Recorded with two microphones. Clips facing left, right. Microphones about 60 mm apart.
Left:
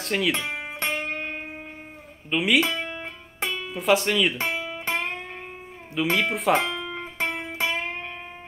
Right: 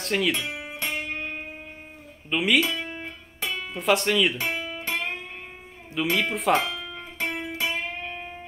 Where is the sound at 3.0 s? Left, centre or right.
Left.